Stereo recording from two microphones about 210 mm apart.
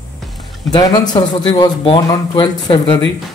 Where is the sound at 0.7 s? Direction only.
20° left (ahead or behind).